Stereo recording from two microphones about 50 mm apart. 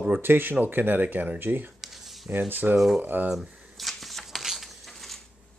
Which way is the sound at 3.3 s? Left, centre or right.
Centre.